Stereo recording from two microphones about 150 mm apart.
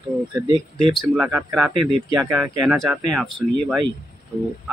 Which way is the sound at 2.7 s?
Centre (ahead or behind).